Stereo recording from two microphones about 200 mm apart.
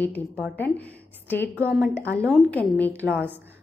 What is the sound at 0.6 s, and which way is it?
A woman's voice, 10° left (ahead or behind).